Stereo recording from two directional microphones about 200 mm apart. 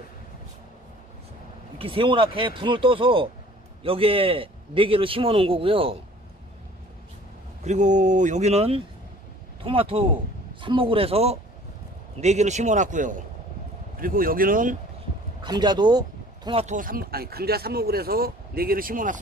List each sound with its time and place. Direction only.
1.8 s a man's voice: 25° right (ahead or behind)
7.6 s a man's voice: 35° right (ahead or behind)
15.4 s speech: 20° right (ahead or behind)
16.6 s speech: 40° right (ahead or behind)